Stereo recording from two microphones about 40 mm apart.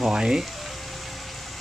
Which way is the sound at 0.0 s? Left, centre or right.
Centre.